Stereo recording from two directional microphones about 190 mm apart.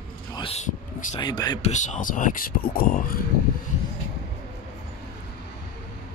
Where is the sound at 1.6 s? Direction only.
40° left (ahead or behind).